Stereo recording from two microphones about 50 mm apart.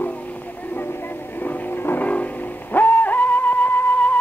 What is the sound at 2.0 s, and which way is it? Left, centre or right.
Music, left.